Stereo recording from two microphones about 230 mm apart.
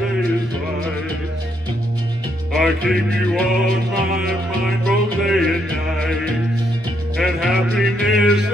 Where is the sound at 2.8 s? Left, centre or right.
Centre.